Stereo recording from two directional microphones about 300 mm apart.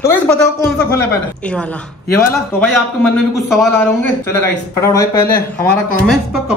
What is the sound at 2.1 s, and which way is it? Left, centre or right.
Speech, centre.